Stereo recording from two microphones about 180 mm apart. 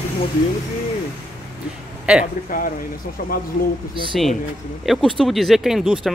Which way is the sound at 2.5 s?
50° left (ahead or behind).